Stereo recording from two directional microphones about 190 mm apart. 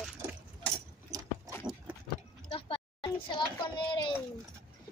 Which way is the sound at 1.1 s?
15° right (ahead or behind).